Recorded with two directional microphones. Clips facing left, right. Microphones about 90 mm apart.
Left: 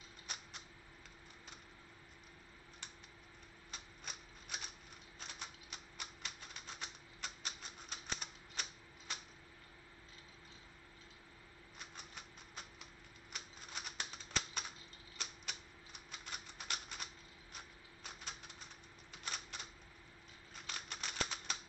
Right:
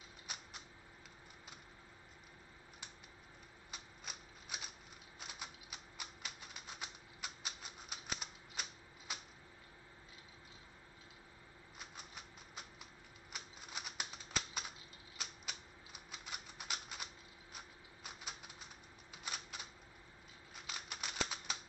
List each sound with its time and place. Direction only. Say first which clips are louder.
3.7 s shuffling cards: even; 5° right (ahead or behind)
5.2 s typewriter: even; 5° right (ahead or behind)
11.9 s typewriter: even; 5° right (ahead or behind)
20.6 s typewriter: even; 5° right (ahead or behind)